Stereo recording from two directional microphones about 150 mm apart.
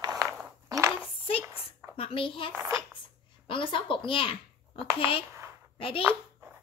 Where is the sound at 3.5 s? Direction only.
35° left (ahead or behind).